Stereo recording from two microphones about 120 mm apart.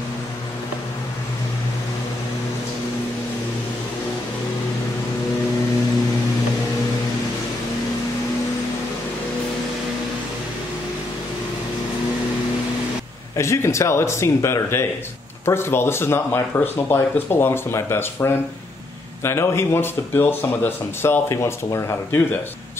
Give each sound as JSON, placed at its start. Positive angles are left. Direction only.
{"t": 13.4, "sound": "speech", "side_deg": 25}